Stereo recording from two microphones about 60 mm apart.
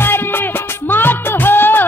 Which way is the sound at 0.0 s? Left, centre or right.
Left.